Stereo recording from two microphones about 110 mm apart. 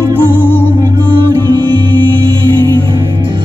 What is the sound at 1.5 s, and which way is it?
Music, 40° right (ahead or behind).